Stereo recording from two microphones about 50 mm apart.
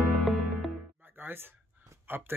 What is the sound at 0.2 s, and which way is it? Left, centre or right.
Music, centre.